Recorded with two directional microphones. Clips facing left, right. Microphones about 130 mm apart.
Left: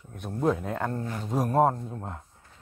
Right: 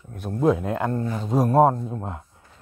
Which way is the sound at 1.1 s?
25° right (ahead or behind).